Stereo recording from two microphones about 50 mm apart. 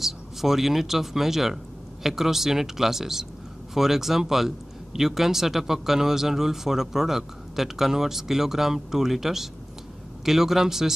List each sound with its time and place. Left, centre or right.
0.0 s speech: centre